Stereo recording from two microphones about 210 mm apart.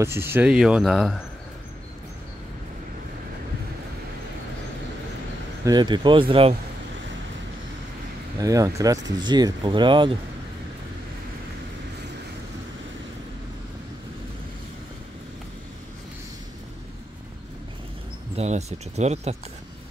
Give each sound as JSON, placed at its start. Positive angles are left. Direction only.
{"t": 0.0, "sound": "speech", "side_deg": -10}
{"t": 5.7, "sound": "speech", "side_deg": -20}
{"t": 8.4, "sound": "speech", "side_deg": -15}
{"t": 18.3, "sound": "speech", "side_deg": -30}